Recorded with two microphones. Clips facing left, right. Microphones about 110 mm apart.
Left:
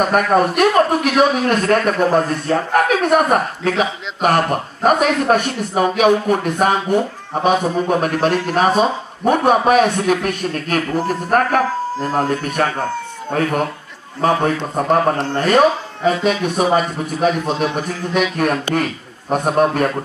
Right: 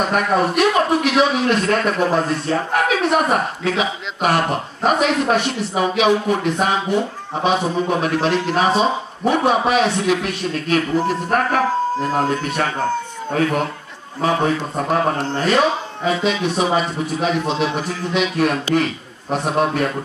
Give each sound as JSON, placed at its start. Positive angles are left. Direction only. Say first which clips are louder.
{"t": 0.0, "sound": "a man's voice", "louder": "left 3 dB", "side_deg": 50}
{"t": 14.2, "sound": "a man's voice", "louder": "left 2 dB", "side_deg": 45}